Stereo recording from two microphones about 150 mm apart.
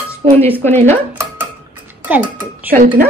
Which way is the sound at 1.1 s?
15° right (ahead or behind).